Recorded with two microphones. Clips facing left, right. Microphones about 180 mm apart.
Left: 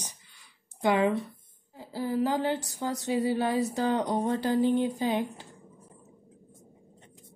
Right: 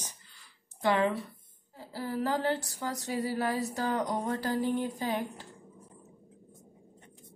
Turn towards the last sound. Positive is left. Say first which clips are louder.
# left 4 dB
turn(degrees=20)  # may be behind; listen again after turning